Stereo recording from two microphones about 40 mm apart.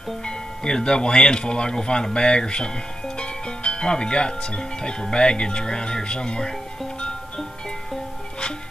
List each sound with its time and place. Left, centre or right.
0.2 s speech: left